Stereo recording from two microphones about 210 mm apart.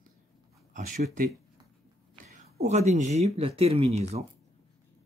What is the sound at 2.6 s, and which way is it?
Speech, 30° right (ahead or behind).